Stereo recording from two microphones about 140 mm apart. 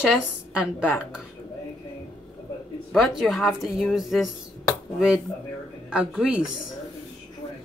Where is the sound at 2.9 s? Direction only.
Centre (ahead or behind).